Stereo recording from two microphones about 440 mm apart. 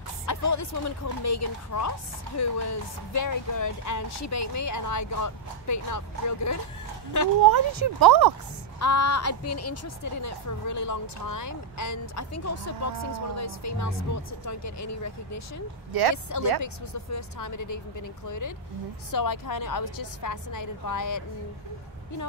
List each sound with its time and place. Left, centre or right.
0.3 s speech: left
7.5 s speech: right
8.7 s speech: left
15.9 s speech: right
16.6 s a woman's voice: left